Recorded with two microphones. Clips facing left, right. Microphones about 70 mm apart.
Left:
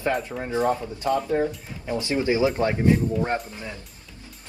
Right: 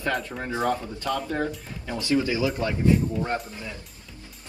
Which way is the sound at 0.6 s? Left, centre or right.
Left.